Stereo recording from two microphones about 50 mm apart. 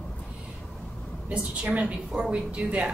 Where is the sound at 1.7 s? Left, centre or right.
Right.